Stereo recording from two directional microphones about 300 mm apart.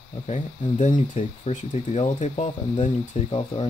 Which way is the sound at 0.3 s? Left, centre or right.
Left.